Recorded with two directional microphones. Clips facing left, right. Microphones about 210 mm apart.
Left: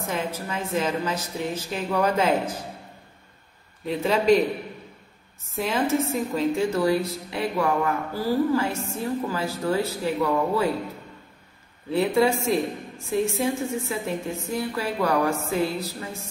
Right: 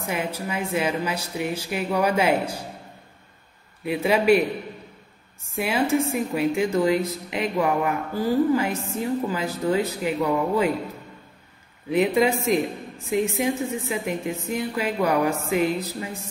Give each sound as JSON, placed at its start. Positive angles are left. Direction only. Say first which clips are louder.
{"t": 0.1, "sound": "a woman's voice", "louder": "right 2 dB", "side_deg": -10}
{"t": 3.8, "sound": "a woman's voice", "louder": "right 1 dB", "side_deg": -10}
{"t": 5.6, "sound": "a woman's voice", "louder": "right 1 dB", "side_deg": -10}
{"t": 11.9, "sound": "a woman's voice", "louder": "right 1 dB", "side_deg": -15}